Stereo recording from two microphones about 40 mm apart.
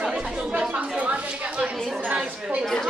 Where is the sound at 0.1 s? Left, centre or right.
Right.